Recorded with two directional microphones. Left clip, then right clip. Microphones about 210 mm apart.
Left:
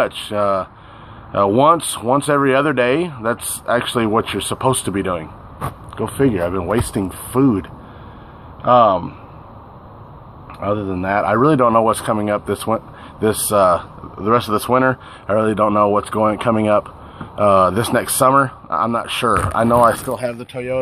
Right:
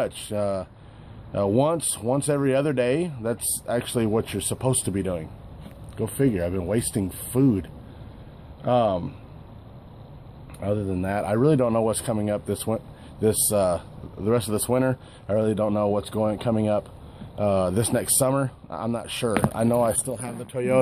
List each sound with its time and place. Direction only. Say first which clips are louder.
0.0 s speech: left 9 dB; 25° right (ahead or behind)
8.6 s speech: left 10 dB; 30° right (ahead or behind)
10.6 s speech: left 7 dB; 30° right (ahead or behind)
19.7 s speech: left 11 dB; 10° right (ahead or behind)